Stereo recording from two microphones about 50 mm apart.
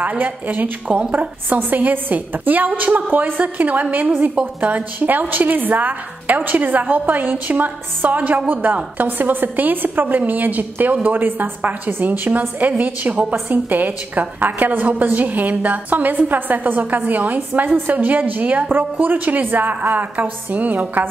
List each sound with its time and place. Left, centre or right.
0.2 s a woman's voice: right